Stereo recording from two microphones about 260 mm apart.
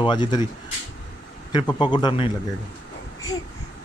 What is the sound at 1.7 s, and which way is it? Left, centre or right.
Speech, centre.